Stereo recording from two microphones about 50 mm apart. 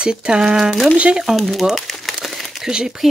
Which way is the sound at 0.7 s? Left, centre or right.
Centre.